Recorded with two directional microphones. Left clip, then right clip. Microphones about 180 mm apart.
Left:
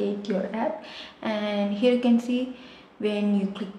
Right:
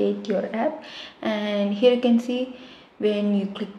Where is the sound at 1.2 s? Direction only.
25° right (ahead or behind).